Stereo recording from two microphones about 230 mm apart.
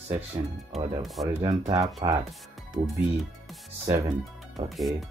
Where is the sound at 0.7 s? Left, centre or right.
Right.